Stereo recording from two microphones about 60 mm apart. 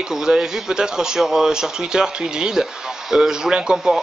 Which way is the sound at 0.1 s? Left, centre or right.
Centre.